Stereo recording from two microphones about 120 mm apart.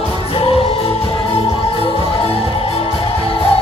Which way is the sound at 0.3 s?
50° left (ahead or behind).